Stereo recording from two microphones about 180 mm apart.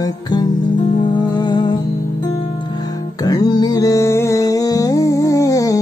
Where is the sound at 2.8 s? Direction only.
20° left (ahead or behind).